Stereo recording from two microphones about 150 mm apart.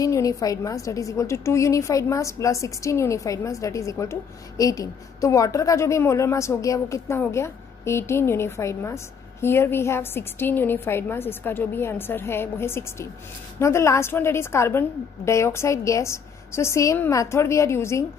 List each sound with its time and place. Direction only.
0.0 s a woman's voice: 20° left (ahead or behind)